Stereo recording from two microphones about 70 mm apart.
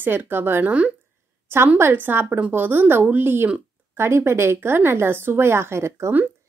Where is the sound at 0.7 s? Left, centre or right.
Centre.